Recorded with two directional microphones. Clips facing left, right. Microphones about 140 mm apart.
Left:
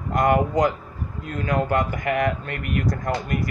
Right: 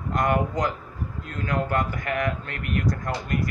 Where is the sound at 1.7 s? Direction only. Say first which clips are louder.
Left 4 dB; 10° left (ahead or behind).